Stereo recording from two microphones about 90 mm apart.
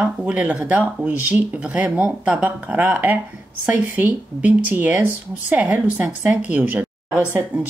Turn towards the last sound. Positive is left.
turn(degrees=-15)  # may be behind; listen again after turning